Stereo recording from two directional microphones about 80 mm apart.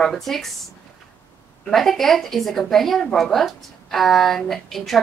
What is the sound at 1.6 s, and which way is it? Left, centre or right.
A woman's voice, centre.